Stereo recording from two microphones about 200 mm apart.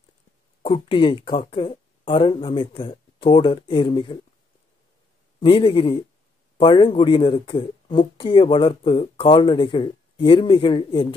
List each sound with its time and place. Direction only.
0.6 s speech: 25° left (ahead or behind)
5.4 s speech: 25° left (ahead or behind)